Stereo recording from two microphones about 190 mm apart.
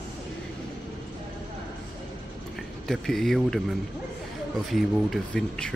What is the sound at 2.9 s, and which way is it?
Speech, centre (ahead or behind).